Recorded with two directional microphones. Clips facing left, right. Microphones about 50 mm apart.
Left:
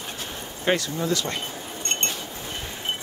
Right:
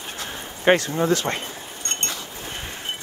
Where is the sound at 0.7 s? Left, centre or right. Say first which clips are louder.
Right 6 dB; right.